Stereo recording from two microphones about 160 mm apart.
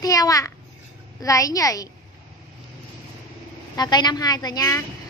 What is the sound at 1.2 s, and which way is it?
Speech, 20° left (ahead or behind).